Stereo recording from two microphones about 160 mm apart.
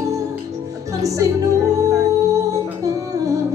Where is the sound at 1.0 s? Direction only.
20° right (ahead or behind).